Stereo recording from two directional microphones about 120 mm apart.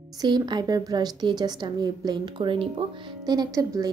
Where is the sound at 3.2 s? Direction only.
30° right (ahead or behind).